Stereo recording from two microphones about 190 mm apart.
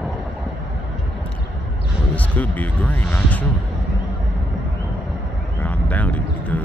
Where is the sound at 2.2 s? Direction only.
10° left (ahead or behind).